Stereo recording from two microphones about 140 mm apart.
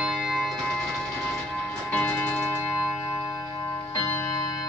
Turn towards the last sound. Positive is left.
turn(degrees=20)  # may be behind; listen again after turning